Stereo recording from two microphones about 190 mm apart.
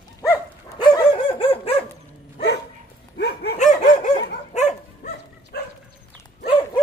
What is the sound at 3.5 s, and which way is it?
Dog, 40° left (ahead or behind).